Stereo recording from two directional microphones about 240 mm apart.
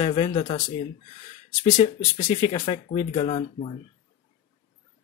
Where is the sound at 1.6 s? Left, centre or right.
Left.